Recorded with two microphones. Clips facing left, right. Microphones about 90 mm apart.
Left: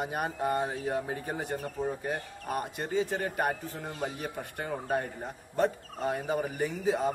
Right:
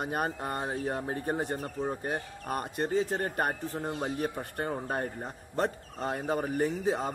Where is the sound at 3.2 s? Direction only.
45° right (ahead or behind).